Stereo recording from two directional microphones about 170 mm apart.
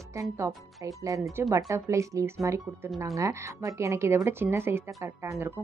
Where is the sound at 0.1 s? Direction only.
15° right (ahead or behind).